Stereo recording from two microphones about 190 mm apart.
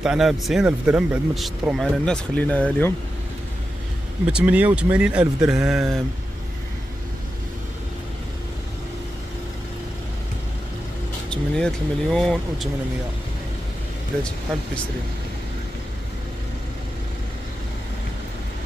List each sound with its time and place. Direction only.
0.0 s speech: centre (ahead or behind)
4.3 s speech: 5° right (ahead or behind)
11.2 s speech: 5° left (ahead or behind)